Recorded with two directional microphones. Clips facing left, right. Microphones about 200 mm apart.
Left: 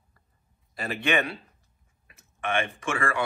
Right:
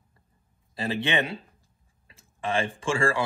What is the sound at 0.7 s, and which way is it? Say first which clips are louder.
Speech: even; 25° right (ahead or behind).